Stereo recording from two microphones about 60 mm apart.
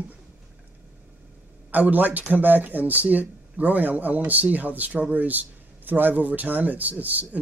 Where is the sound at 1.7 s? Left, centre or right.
Right.